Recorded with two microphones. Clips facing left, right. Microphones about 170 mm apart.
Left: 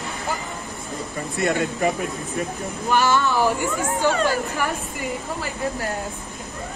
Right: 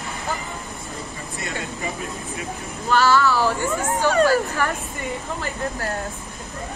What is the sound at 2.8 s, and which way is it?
Speech, 20° left (ahead or behind).